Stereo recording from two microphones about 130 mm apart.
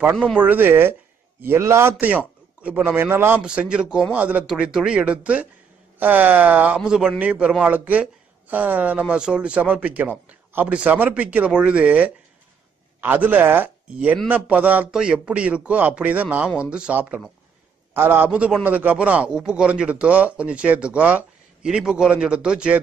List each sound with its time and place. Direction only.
0.0 s speech: 15° right (ahead or behind)